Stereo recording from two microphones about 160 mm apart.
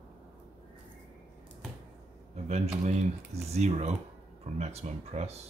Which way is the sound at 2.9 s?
45° right (ahead or behind).